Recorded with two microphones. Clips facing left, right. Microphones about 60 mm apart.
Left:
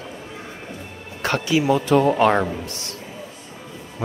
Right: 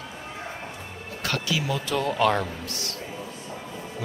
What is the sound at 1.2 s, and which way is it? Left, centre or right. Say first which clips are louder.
Speech: left 8 dB; left.